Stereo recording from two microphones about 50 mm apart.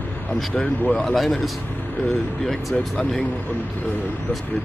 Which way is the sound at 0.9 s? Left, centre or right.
Centre.